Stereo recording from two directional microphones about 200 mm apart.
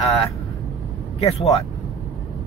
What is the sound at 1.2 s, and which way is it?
Speech, 30° left (ahead or behind).